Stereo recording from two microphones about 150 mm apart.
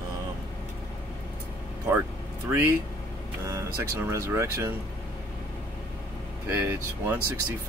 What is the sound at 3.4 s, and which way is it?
Speech, 20° right (ahead or behind).